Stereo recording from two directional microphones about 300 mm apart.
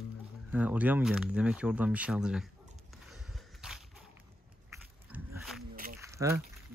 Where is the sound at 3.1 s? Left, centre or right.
Centre.